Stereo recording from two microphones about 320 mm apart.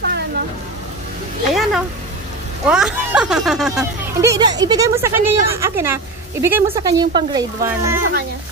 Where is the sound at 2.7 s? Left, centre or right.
Centre.